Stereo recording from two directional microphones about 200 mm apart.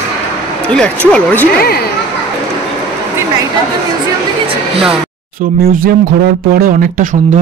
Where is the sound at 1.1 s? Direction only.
5° left (ahead or behind).